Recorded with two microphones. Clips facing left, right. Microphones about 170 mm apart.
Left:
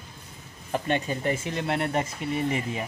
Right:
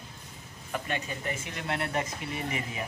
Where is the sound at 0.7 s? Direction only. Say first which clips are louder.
Left 7 dB; 30° left (ahead or behind).